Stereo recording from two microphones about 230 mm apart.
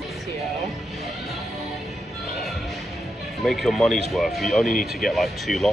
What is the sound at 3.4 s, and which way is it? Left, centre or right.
Speech, centre.